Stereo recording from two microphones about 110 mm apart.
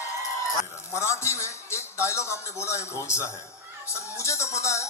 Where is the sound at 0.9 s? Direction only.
25° left (ahead or behind).